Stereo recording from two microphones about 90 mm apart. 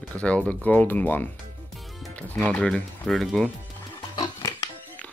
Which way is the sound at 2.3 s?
10° left (ahead or behind).